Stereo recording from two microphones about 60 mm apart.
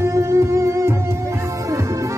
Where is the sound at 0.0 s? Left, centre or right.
Right.